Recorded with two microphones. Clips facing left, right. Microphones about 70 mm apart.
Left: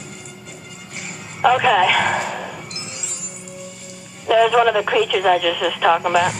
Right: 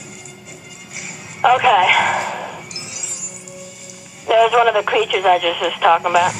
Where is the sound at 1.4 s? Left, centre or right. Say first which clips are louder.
Right 2 dB; right.